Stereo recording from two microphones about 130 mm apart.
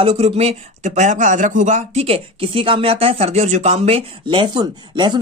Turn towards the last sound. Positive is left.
turn(degrees=-35)  # may be behind; listen again after turning